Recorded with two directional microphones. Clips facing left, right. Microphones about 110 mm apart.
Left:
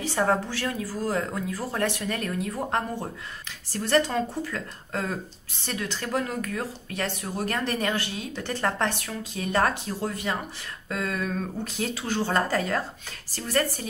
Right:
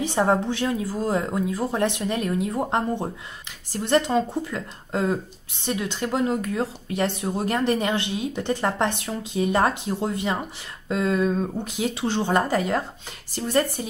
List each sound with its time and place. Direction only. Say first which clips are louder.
0.0 s speech: right 3 dB; 20° right (ahead or behind)